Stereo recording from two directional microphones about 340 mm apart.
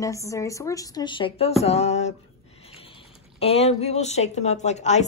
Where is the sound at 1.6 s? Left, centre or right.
Centre.